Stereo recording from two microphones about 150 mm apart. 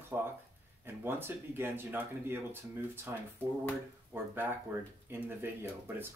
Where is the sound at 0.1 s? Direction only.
15° right (ahead or behind).